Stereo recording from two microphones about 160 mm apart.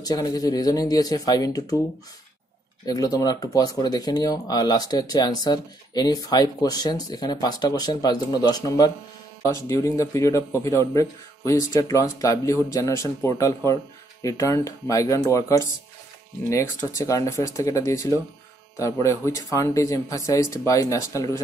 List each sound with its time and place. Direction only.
0.0 s speech: 25° left (ahead or behind)
2.8 s speech: 25° left (ahead or behind)